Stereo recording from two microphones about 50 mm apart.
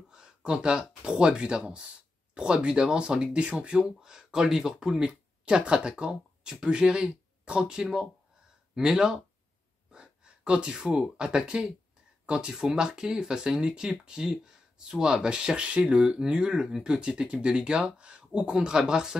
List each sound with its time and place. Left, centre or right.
0.1 s speech: centre